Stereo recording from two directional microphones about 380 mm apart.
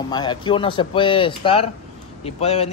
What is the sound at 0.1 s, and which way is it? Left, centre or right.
Speech, centre.